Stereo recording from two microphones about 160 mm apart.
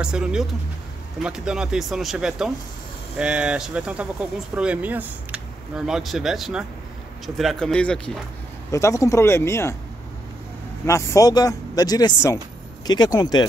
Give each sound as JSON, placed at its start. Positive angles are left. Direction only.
{"t": 0.0, "sound": "speech", "side_deg": -5}
{"t": 8.7, "sound": "speech", "side_deg": 20}
{"t": 10.9, "sound": "speech", "side_deg": 20}